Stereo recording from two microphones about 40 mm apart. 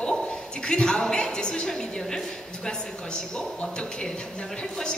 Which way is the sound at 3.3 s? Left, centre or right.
Left.